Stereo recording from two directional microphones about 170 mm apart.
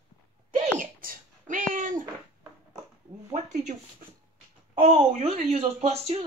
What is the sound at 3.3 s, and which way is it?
Speech, 45° right (ahead or behind).